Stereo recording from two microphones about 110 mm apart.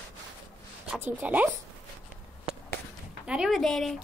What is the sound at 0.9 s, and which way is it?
Speech, 15° right (ahead or behind).